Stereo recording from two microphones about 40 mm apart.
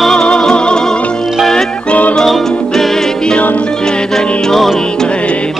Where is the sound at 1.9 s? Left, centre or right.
Left.